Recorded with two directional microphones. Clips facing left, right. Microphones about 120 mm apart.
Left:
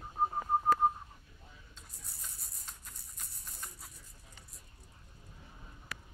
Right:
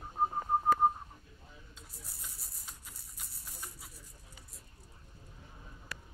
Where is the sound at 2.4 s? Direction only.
10° right (ahead or behind).